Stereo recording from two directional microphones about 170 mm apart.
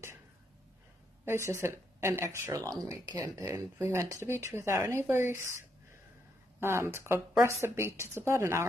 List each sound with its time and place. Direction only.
1.2 s speech: 15° right (ahead or behind)
6.6 s speech: 15° right (ahead or behind)